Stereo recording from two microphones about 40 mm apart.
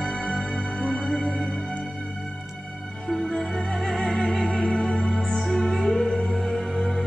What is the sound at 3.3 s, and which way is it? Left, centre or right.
Music, centre.